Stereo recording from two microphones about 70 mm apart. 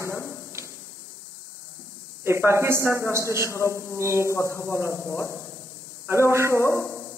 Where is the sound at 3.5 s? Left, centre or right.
Left.